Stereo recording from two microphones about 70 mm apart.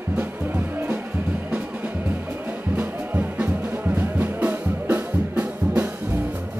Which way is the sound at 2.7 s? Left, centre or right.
Right.